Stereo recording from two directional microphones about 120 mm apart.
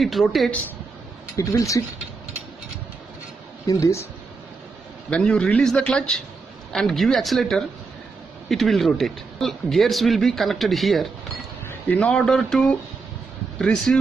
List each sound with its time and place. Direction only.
0.0 s speech: centre (ahead or behind)
1.3 s speech: 25° left (ahead or behind)
3.6 s speech: 25° left (ahead or behind)
5.1 s a man's voice: 10° left (ahead or behind)
11.6 s a man's voice: 10° left (ahead or behind)